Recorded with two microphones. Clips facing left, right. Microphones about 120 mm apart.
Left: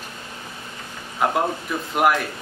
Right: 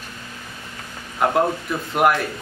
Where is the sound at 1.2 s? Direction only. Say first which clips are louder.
Right 3 dB; centre (ahead or behind).